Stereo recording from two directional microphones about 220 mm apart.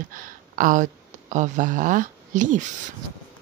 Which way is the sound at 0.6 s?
35° right (ahead or behind).